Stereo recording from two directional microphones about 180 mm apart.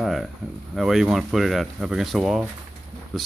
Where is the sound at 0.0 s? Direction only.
Centre (ahead or behind).